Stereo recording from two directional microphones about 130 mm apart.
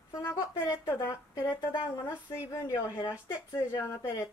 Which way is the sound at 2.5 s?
25° left (ahead or behind).